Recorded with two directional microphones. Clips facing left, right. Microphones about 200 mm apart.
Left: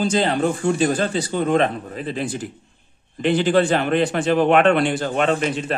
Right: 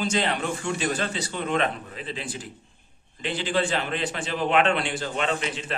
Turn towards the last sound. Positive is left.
turn(degrees=45)  # may be behind; listen again after turning